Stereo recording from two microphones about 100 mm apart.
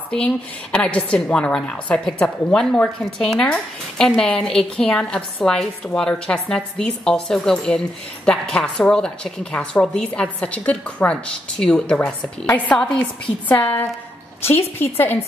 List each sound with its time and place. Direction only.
0.1 s a woman's voice: 10° left (ahead or behind)